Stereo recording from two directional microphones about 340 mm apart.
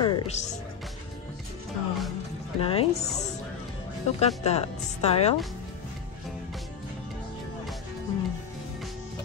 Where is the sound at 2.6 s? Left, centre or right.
Centre.